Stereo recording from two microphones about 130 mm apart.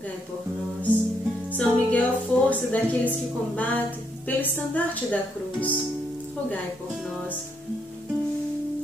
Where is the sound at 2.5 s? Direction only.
10° left (ahead or behind).